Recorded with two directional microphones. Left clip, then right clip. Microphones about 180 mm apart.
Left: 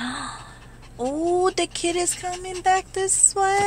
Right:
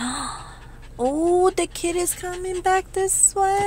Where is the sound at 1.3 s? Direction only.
20° right (ahead or behind).